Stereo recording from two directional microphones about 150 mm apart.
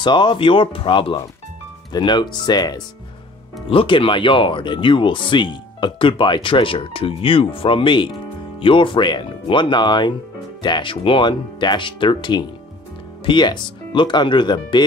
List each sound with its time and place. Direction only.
0.0 s speech: 30° left (ahead or behind)